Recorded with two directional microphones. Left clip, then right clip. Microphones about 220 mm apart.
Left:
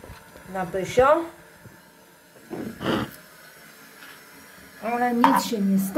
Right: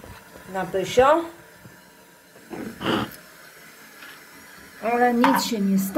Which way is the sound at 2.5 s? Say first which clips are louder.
Right 1 dB; 10° left (ahead or behind).